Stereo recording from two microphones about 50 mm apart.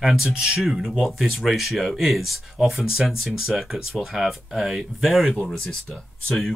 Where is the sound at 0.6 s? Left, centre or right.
Centre.